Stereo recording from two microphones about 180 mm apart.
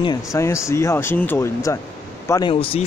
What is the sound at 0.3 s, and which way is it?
Speech, 15° left (ahead or behind).